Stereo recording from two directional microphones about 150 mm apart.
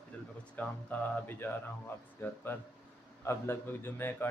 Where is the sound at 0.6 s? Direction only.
10° left (ahead or behind).